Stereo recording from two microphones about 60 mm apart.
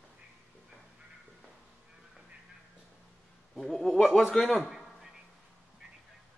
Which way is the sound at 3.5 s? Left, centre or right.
Centre.